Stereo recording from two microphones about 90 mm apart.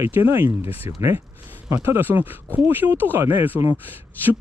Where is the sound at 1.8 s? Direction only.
25° right (ahead or behind).